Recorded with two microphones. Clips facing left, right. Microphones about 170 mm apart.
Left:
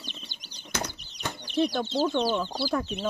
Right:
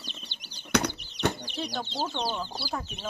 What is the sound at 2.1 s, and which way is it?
Speech, 70° left (ahead or behind).